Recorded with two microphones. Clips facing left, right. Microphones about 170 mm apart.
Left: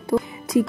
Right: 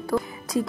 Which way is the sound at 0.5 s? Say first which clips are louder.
Left 6 dB; 80° left.